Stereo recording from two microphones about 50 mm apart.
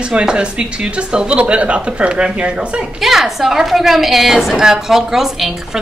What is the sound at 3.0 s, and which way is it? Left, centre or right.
A woman's voice, centre.